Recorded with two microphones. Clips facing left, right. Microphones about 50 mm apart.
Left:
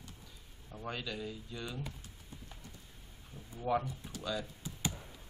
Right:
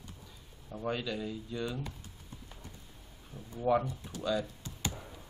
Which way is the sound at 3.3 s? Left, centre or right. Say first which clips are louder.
Right 4 dB; right.